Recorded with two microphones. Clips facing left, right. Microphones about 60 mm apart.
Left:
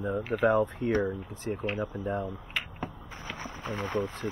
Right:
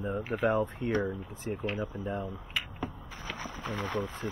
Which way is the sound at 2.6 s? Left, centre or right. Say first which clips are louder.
Left 1 dB; left.